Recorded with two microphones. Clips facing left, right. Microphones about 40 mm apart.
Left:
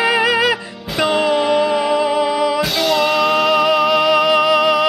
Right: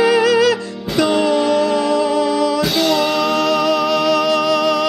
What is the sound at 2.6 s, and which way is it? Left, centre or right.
Music, centre.